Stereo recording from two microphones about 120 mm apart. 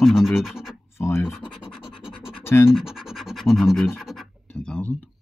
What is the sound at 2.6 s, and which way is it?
Scratch, 5° right (ahead or behind).